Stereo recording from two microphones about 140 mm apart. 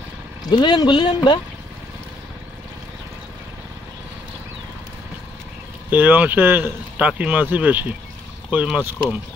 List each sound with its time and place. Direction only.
0.5 s speech: 30° left (ahead or behind)
5.9 s speech: 15° right (ahead or behind)